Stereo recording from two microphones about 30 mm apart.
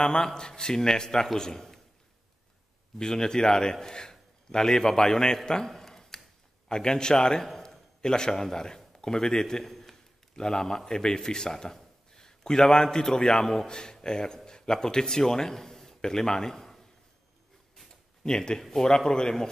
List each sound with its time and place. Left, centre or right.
0.0 s a man's voice: left
3.0 s a man's voice: left
5.7 s a sound: centre
6.7 s a man's voice: left
9.7 s a sound: centre
10.3 s a man's voice: left
13.7 s a man's voice: left
18.2 s a man's voice: left